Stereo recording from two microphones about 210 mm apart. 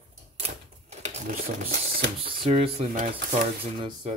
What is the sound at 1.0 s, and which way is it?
Speech, 35° right (ahead or behind).